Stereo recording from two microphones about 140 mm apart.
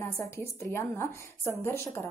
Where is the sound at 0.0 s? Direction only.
20° left (ahead or behind).